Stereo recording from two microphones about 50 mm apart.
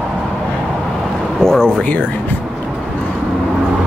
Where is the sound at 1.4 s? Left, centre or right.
Centre.